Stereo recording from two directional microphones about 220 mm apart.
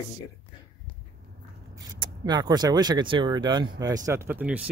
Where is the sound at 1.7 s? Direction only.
20° right (ahead or behind).